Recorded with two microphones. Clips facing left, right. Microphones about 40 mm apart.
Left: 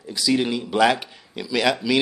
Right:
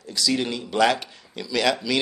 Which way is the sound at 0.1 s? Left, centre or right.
Centre.